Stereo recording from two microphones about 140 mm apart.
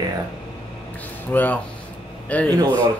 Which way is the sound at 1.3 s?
15° left (ahead or behind).